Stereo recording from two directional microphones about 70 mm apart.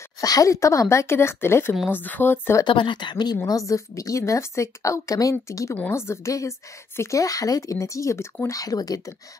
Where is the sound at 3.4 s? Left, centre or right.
Left.